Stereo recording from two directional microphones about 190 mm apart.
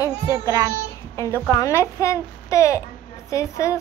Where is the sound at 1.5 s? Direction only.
15° left (ahead or behind).